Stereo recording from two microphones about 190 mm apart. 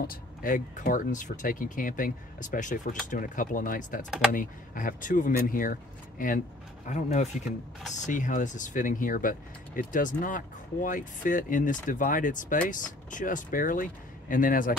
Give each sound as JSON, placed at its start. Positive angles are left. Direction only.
{"t": 0.0, "sound": "speech", "side_deg": 50}